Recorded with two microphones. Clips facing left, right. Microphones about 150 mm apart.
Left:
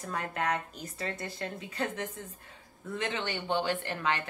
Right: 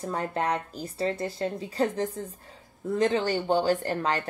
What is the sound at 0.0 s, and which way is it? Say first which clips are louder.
A woman's voice: right 5 dB; 30° right (ahead or behind).